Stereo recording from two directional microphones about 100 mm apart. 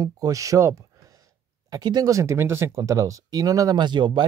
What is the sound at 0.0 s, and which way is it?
Speech, 35° right (ahead or behind).